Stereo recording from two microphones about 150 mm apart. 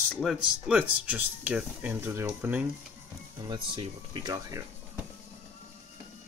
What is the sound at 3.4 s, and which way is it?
Speech, 35° right (ahead or behind).